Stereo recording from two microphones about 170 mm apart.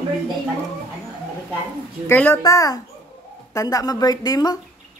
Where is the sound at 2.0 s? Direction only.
15° left (ahead or behind).